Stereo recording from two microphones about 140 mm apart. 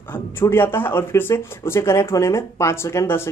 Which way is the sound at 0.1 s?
15° left (ahead or behind).